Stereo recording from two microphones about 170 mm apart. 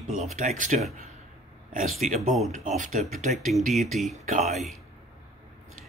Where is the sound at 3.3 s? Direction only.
Centre (ahead or behind).